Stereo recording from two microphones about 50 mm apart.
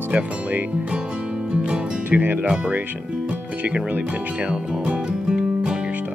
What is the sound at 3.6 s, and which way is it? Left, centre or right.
Speech, right.